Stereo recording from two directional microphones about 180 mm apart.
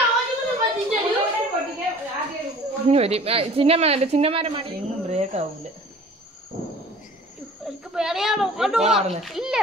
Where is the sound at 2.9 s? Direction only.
35° right (ahead or behind).